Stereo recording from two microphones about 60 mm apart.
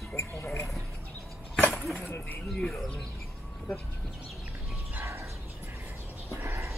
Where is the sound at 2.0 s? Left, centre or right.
Left.